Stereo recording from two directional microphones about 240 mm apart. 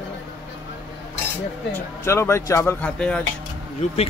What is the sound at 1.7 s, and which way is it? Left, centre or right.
Speech, centre.